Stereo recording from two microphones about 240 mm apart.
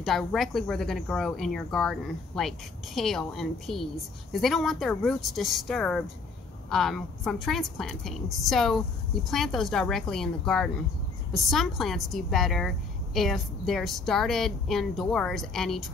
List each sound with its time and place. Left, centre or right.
0.0 s speech: centre